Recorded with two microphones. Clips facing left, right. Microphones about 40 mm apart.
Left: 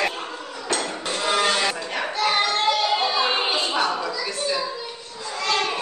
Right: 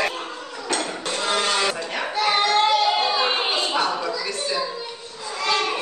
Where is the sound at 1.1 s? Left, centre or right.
Centre.